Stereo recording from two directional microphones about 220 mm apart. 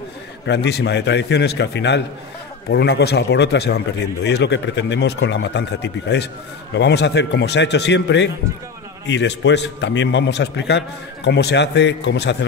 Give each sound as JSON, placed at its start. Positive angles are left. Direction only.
{"t": 0.5, "sound": "speech", "side_deg": 50}